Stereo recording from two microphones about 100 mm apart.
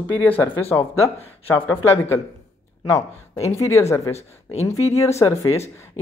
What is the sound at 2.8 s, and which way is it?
Speech, 30° left (ahead or behind).